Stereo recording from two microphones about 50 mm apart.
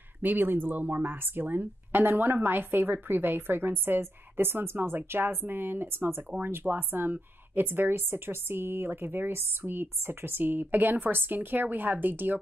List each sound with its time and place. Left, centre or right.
0.2 s speech: right